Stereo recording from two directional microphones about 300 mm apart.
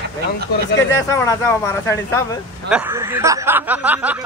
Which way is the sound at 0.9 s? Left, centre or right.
Centre.